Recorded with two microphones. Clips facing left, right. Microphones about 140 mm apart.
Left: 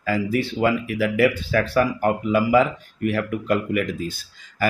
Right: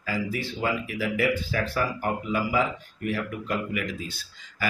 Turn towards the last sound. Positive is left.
turn(degrees=45)  # may be behind; listen again after turning